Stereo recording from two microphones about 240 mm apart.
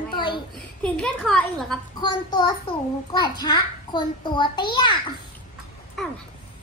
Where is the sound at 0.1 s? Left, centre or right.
Centre.